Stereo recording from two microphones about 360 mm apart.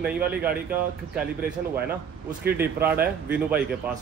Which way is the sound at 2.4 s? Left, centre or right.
Centre.